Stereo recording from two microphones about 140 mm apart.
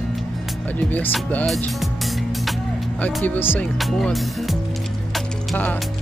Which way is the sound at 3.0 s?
10° left (ahead or behind).